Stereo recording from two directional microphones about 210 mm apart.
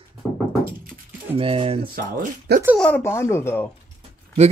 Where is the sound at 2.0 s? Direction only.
45° right (ahead or behind).